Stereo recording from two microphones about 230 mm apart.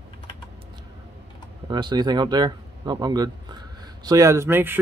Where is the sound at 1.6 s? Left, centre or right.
Centre.